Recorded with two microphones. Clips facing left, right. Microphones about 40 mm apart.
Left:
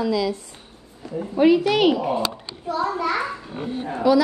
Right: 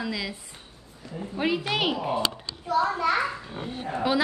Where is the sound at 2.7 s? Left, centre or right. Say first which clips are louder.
Even; right.